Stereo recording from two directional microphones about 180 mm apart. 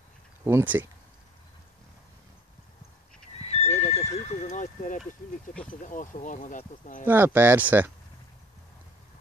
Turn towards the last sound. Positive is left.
turn(degrees=-10)  # may be behind; listen again after turning